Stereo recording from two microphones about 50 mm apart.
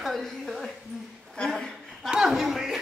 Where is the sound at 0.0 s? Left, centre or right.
Centre.